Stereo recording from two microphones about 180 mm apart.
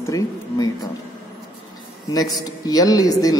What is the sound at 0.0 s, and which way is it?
Speech, 20° left (ahead or behind).